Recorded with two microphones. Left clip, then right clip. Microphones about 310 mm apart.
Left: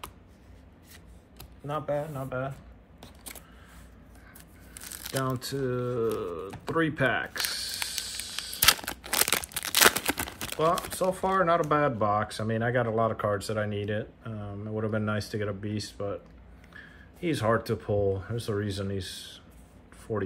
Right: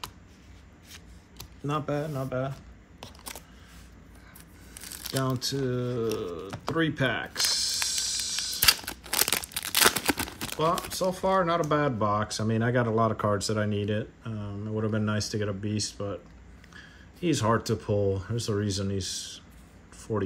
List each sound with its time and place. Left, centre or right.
1.7 s speech: centre
3.0 s a sound: centre
4.7 s speech: centre
6.7 s a sound: centre
8.5 s crumpling: centre
11.7 s speech: centre